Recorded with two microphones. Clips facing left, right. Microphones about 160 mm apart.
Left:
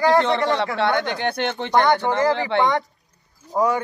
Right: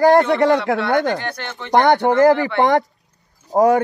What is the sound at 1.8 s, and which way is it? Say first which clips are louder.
Speech: right 4 dB; 45° right (ahead or behind).